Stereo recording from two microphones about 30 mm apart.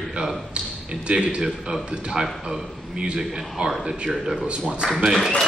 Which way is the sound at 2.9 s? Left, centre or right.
Right.